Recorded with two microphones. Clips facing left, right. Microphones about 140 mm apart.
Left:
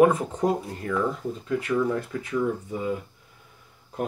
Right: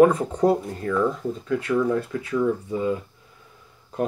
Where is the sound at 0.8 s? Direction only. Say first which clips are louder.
Right 3 dB; 45° right (ahead or behind).